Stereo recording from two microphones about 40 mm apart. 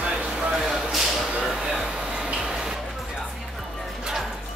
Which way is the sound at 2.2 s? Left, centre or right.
Right.